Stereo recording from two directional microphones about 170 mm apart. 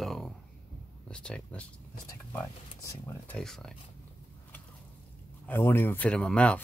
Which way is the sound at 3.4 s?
Centre (ahead or behind).